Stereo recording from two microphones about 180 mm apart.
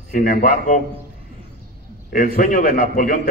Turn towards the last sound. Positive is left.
turn(degrees=50)  # may be behind; listen again after turning